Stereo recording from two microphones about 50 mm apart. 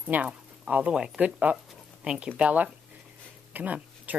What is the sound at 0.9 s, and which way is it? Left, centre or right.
Speech, centre.